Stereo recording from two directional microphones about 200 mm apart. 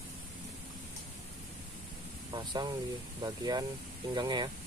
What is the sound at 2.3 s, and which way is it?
Speech, 20° right (ahead or behind).